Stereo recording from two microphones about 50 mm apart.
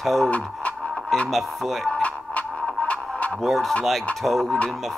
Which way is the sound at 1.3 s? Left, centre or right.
Centre.